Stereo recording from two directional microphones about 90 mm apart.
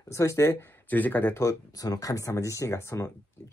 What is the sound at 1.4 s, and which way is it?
Speech, 40° left (ahead or behind).